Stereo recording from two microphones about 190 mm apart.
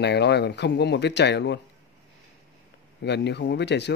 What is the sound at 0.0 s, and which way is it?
Speech, 60° left (ahead or behind).